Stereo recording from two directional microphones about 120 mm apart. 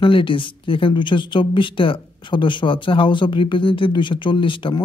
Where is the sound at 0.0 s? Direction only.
45° left (ahead or behind).